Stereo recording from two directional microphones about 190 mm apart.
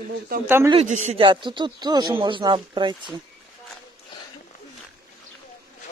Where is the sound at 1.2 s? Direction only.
25° right (ahead or behind).